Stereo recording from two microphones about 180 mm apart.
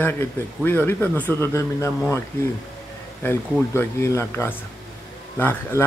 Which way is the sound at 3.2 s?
15° left (ahead or behind).